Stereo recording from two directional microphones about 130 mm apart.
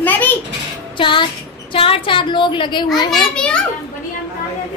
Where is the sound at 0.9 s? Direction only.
40° left (ahead or behind).